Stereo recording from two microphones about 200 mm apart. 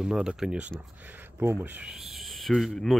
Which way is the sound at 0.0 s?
5° right (ahead or behind).